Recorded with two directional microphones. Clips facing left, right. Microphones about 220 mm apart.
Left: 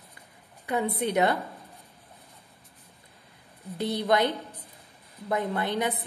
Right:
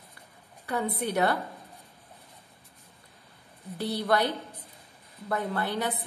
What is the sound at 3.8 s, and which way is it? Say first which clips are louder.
Speech: left 2 dB; 15° left (ahead or behind).